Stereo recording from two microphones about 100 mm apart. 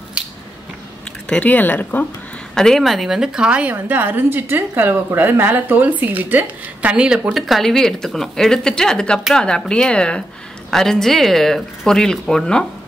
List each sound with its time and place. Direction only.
1.3 s speech: 15° left (ahead or behind)
2.5 s speech: 5° left (ahead or behind)
3.7 s a woman's voice: 20° right (ahead or behind); by 12.6 s 5° left (ahead or behind)